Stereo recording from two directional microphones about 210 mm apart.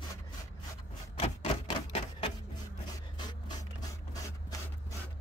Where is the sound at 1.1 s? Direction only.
30° left (ahead or behind).